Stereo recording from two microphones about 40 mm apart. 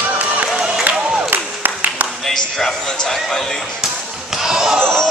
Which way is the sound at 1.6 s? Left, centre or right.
Right.